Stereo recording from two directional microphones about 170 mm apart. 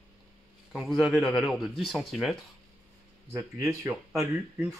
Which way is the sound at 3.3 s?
15° right (ahead or behind).